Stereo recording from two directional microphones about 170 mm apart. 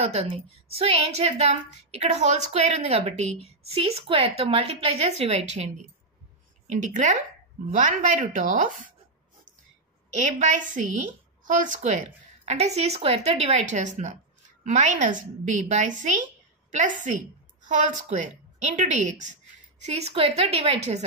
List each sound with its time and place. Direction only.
0.0 s a woman's voice: 35° right (ahead or behind)
7.7 s a woman's voice: 50° right (ahead or behind)
10.1 s a woman's voice: 45° right (ahead or behind)